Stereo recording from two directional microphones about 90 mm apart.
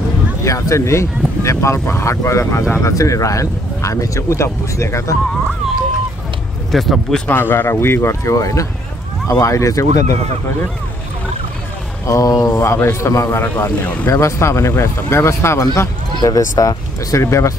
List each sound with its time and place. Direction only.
0.4 s speech: 35° left (ahead or behind)
6.7 s speech: centre (ahead or behind)
7.2 s speech: 25° left (ahead or behind); by 10.0 s 40° left (ahead or behind)
12.1 s speech: 40° left (ahead or behind)
12.5 s speech: 30° left (ahead or behind)
14.1 s speech: 35° left (ahead or behind)